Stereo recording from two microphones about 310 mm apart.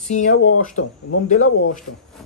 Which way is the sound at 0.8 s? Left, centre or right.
Left.